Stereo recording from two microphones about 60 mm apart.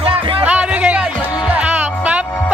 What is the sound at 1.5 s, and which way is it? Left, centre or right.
Music, right.